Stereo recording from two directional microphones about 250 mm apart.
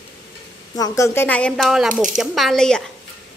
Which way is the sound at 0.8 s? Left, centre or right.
Centre.